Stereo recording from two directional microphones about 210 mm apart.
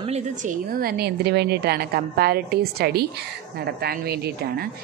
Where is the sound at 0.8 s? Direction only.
50° right (ahead or behind).